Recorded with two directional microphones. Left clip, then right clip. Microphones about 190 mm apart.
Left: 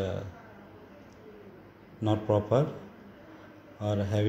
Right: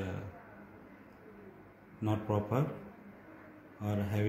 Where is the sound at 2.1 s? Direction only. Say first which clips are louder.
Left 8 dB; 20° left (ahead or behind).